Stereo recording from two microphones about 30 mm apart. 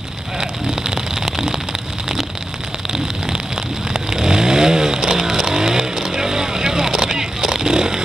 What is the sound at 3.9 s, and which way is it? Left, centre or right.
Vehicle, centre.